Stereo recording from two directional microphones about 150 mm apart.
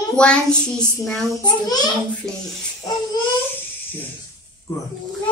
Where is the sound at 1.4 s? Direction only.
25° left (ahead or behind).